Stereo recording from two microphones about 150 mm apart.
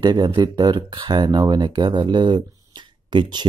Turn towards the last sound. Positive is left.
turn(degrees=-30)  # may be behind; listen again after turning